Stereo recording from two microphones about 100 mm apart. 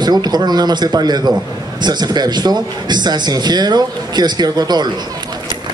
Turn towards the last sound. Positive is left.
turn(degrees=-45)  # may be behind; listen again after turning